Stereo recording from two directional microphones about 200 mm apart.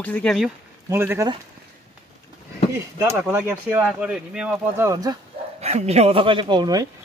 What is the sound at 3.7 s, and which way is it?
Speech, 5° right (ahead or behind).